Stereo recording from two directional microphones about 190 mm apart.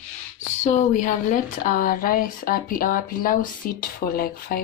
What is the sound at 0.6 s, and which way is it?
Speech, 40° left (ahead or behind).